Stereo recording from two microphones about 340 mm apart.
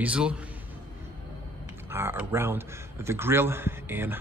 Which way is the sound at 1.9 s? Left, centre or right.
Centre.